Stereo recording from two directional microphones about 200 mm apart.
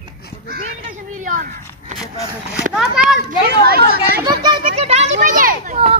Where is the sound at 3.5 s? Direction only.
50° right (ahead or behind).